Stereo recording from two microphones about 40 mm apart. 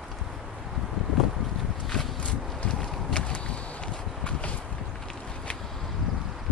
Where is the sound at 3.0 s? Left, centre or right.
Left.